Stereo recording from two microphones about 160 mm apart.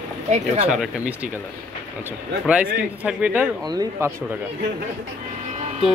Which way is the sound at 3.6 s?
25° right (ahead or behind).